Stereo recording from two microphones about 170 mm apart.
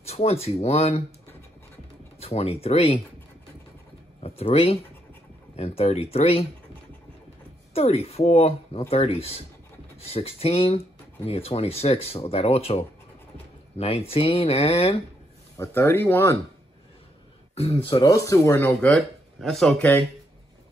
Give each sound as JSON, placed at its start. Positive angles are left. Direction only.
{"t": 0.0, "sound": "speech", "side_deg": 35}
{"t": 2.1, "sound": "speech", "side_deg": 35}
{"t": 4.2, "sound": "speech", "side_deg": 35}
{"t": 7.7, "sound": "speech", "side_deg": 35}
{"t": 15.5, "sound": "speech", "side_deg": 15}
{"t": 17.6, "sound": "speech", "side_deg": 35}
{"t": 18.0, "sound": "speech", "side_deg": 20}